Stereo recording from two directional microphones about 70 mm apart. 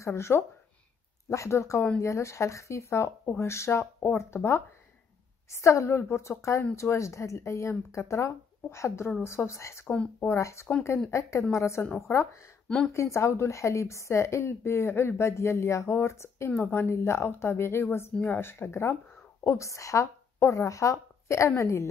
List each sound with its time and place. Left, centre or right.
0.0 s a woman's voice: left
12.6 s a woman's voice: centre
12.9 s a woman's voice: left